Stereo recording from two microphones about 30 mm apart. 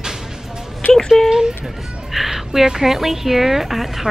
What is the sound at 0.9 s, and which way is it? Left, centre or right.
Speech, centre.